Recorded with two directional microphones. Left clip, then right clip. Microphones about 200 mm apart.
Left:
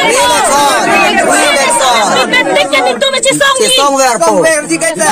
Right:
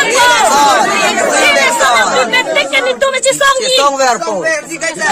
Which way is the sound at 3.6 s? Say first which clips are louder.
Left 2 dB; 40° left (ahead or behind).